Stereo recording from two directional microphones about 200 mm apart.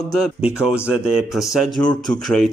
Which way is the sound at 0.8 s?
5° right (ahead or behind).